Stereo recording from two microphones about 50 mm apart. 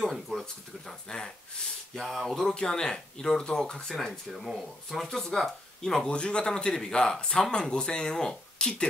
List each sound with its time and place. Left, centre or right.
0.0 s speech: centre
2.0 s speech: centre
6.0 s speech: centre